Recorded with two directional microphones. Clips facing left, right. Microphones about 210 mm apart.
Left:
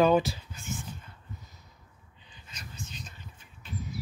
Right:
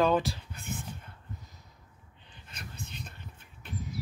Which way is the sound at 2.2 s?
60° right (ahead or behind).